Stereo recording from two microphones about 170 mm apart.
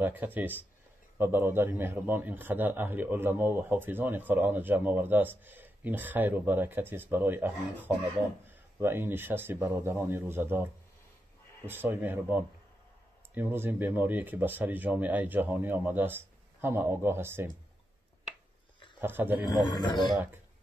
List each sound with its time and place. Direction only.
0.0 s a man's voice: 10° right (ahead or behind)
18.9 s a man's voice: 10° right (ahead or behind)
19.4 s a man's voice: 25° left (ahead or behind)